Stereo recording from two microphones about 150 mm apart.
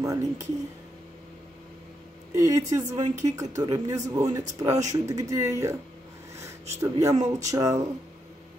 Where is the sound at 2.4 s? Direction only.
20° right (ahead or behind).